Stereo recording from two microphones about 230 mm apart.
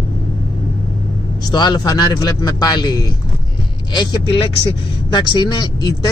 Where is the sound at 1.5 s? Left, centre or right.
Centre.